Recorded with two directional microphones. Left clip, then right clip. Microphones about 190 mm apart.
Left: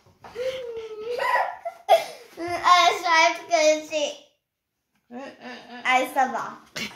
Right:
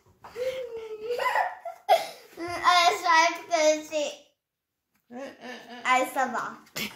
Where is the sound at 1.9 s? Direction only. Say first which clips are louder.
Left 4 dB; centre (ahead or behind).